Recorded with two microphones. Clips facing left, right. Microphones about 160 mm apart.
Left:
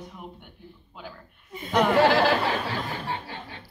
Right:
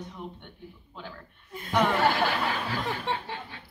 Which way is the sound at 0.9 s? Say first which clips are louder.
Even; 5° left (ahead or behind).